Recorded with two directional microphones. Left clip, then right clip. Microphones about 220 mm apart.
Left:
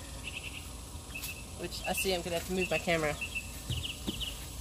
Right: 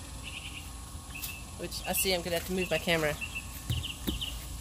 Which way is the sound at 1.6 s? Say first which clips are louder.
Right 1 dB; 25° right (ahead or behind).